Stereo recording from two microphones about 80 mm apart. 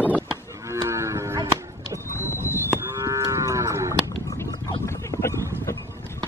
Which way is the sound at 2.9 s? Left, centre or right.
Right.